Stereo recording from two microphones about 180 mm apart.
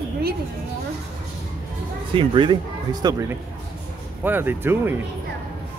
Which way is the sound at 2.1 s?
25° right (ahead or behind).